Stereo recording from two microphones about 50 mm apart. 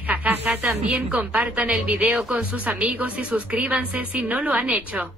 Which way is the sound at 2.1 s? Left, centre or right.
Centre.